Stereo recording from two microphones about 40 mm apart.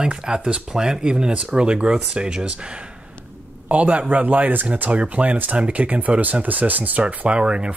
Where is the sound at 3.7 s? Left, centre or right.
Right.